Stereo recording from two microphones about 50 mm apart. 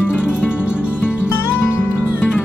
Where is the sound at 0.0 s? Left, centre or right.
Centre.